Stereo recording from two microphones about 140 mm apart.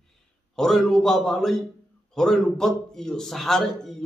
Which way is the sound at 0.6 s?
5° left (ahead or behind).